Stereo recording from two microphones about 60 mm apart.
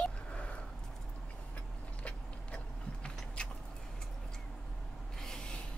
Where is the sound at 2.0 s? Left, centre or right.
Centre.